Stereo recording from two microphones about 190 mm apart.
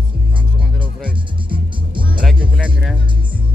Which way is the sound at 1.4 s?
25° right (ahead or behind).